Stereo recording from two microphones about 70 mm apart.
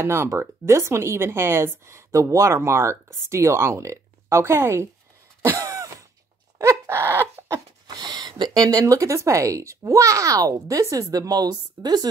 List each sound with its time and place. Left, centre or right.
0.0 s speech: right
5.4 s cough: right
6.6 s dog: right
7.8 s speech: right